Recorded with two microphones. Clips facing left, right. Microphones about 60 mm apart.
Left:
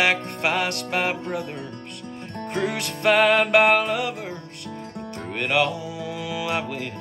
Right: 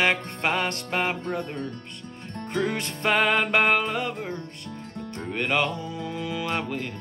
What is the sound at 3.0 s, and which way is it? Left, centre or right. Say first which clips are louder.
Music: left 4 dB; centre.